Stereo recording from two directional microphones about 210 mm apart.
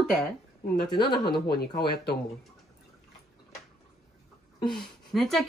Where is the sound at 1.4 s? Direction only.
50° left (ahead or behind).